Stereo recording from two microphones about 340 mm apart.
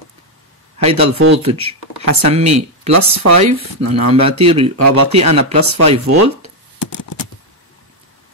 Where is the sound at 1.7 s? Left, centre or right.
Right.